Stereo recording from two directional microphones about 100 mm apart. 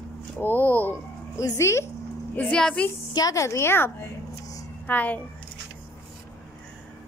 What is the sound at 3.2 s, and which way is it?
A woman's voice, 35° left (ahead or behind).